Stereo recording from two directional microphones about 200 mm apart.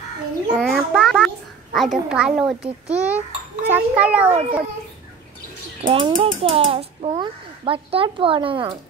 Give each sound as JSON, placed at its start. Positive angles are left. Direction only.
{"t": 0.6, "sound": "a child's voice", "side_deg": 0}
{"t": 4.3, "sound": "a child's voice", "side_deg": -30}
{"t": 5.9, "sound": "speech", "side_deg": -25}